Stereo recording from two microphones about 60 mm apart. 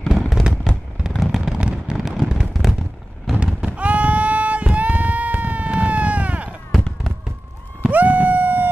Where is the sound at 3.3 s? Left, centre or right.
Right.